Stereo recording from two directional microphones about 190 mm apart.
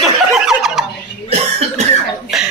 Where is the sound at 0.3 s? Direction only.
Centre (ahead or behind).